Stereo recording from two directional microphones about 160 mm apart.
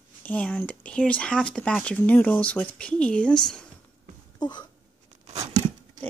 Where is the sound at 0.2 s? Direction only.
10° left (ahead or behind).